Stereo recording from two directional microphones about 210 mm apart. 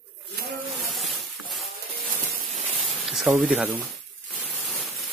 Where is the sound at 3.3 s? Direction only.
5° right (ahead or behind).